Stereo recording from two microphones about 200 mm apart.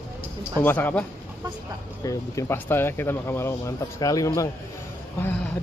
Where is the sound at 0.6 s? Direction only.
10° left (ahead or behind).